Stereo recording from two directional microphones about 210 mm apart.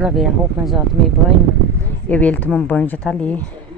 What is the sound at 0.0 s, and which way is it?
Speech, centre (ahead or behind).